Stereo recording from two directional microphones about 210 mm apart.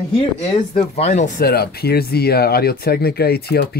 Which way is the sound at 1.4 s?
50° left (ahead or behind).